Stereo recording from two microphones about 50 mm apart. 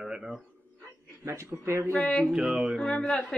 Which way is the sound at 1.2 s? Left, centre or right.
Right.